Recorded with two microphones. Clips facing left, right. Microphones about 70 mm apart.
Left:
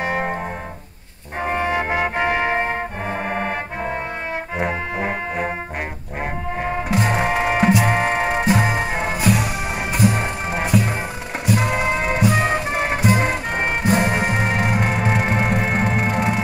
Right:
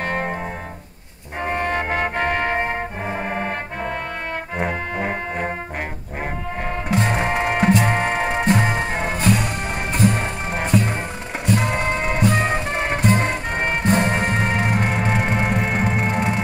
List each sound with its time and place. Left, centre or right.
0.0 s music: centre
1.4 s trumpet: centre
3.1 s music: centre
3.3 s brass instrument: centre
4.6 s music: centre
6.9 s music: centre